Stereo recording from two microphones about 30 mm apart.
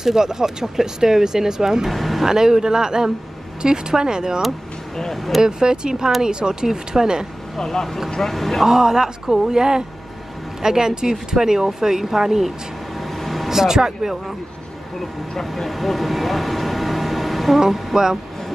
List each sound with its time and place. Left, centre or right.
0.0 s speech: centre
1.9 s speech: centre
2.2 s speech: centre
5.1 s speech: centre
5.4 s speech: right
7.5 s speech: centre
8.6 s speech: centre
13.2 s vehicle: centre
13.5 s speech: centre
15.3 s speech: centre